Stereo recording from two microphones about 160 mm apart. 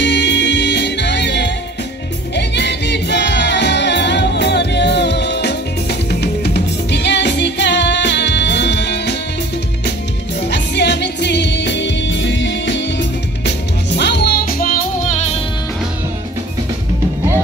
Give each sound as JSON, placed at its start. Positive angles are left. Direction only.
{"t": 0.0, "sound": "music", "side_deg": 90}
{"t": 10.4, "sound": "music", "side_deg": 90}